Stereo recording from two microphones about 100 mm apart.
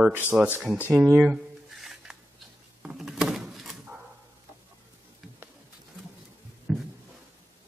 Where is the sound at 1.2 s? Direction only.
5° right (ahead or behind).